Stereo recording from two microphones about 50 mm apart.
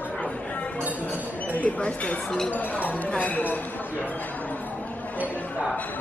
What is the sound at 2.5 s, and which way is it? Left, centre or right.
A woman's voice, left.